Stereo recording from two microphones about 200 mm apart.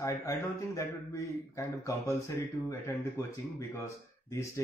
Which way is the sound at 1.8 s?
15° left (ahead or behind).